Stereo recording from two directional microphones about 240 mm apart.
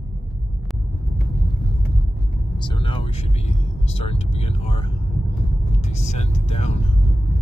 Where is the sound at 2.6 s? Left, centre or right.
Centre.